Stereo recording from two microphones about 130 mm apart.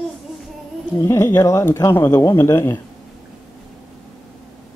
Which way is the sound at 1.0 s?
20° left (ahead or behind).